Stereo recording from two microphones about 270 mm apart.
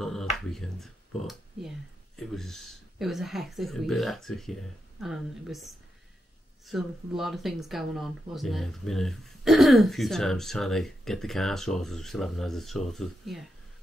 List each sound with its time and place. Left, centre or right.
0.0 s finger snapping: centre
2.1 s speech: centre